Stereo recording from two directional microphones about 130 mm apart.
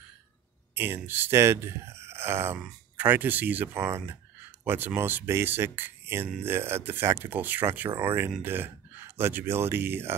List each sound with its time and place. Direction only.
0.7 s speech: 15° right (ahead or behind)